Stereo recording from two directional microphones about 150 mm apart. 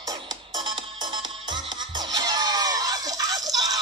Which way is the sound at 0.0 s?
25° right (ahead or behind).